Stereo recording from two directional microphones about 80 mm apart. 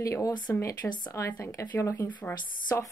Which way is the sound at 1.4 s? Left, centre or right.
Left.